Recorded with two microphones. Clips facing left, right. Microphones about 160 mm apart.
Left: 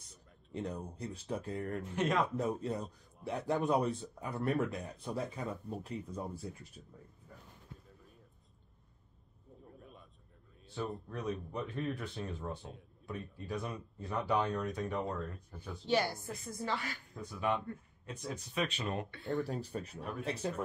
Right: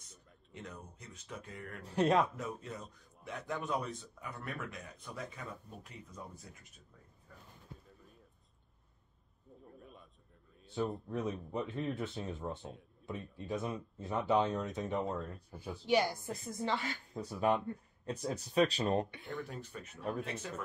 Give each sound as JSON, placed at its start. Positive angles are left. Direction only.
{"t": 0.5, "sound": "speech", "side_deg": 35}
{"t": 1.8, "sound": "speech", "side_deg": -35}
{"t": 2.3, "sound": "speech", "side_deg": 30}
{"t": 9.7, "sound": "a sound", "side_deg": 0}
{"t": 11.1, "sound": "speech", "side_deg": -20}
{"t": 12.4, "sound": "a man's voice", "side_deg": 0}
{"t": 13.0, "sound": "speech", "side_deg": -20}
{"t": 15.0, "sound": "a man's voice", "side_deg": 0}
{"t": 15.5, "sound": "speech", "side_deg": -10}
{"t": 19.0, "sound": "speech", "side_deg": -15}
{"t": 19.4, "sound": "speech", "side_deg": 35}
{"t": 20.0, "sound": "a man's voice", "side_deg": 0}
{"t": 20.2, "sound": "speech", "side_deg": 35}